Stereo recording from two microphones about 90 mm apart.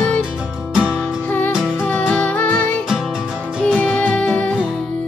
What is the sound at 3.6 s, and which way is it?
Music, 15° left (ahead or behind).